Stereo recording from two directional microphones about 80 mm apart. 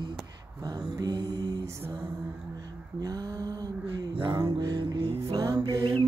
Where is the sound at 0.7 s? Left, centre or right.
Right.